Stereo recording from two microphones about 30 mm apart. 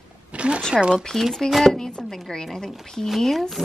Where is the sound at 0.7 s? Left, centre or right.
Right.